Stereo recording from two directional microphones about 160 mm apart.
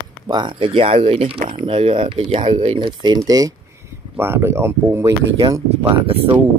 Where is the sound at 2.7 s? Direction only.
25° right (ahead or behind).